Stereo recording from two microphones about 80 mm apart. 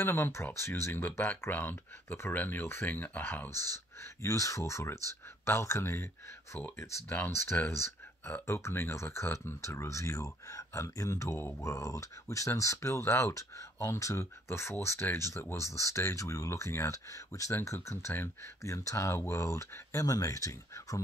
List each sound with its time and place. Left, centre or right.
0.0 s speech: left
4.0 s speech: left